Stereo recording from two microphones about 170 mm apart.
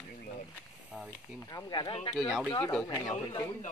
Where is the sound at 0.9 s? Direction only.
5° right (ahead or behind).